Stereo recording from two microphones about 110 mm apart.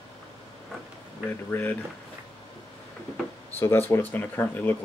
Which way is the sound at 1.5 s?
15° left (ahead or behind).